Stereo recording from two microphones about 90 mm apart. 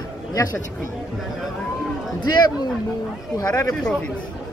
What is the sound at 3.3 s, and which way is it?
Speech, 45° left (ahead or behind).